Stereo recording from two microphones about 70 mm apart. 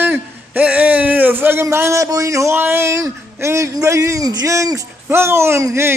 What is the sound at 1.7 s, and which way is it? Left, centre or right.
Speech, right.